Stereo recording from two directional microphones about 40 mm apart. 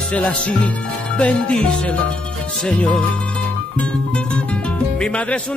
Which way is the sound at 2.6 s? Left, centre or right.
Left.